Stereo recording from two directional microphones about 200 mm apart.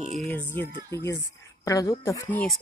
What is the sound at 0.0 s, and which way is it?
Music, centre (ahead or behind).